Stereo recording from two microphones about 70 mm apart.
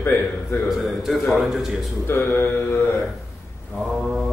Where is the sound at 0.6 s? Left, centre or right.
Centre.